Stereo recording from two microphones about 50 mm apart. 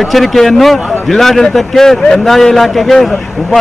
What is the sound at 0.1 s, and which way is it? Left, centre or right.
A man's voice, centre.